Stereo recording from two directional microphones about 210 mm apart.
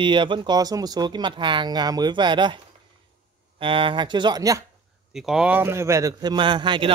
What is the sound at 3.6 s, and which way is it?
Speech, 25° right (ahead or behind).